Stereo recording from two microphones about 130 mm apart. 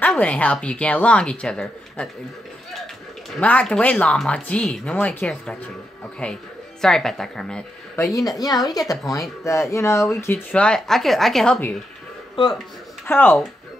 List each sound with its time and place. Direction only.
0.0 s speech: 10° left (ahead or behind)
3.3 s a woman's voice: 10° left (ahead or behind)
7.9 s speech: 25° left (ahead or behind)
10.5 s a woman's voice: 5° left (ahead or behind)
13.0 s speech: 15° left (ahead or behind)